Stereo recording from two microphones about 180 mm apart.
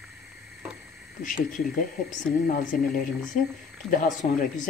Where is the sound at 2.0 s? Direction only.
45° left (ahead or behind).